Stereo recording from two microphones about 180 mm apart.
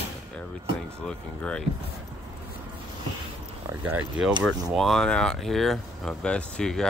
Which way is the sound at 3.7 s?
10° right (ahead or behind).